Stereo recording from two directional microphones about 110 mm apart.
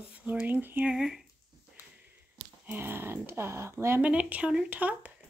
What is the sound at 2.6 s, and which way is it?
Speech, 20° right (ahead or behind).